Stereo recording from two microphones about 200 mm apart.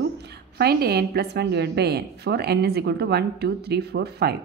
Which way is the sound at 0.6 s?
50° right (ahead or behind).